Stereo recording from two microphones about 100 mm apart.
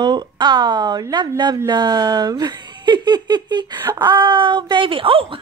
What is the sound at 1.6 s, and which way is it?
Speech, 45° right (ahead or behind).